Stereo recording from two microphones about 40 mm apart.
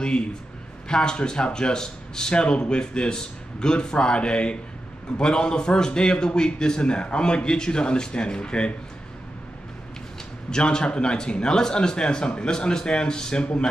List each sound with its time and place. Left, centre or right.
0.0 s a man's voice: left
10.5 s a man's voice: left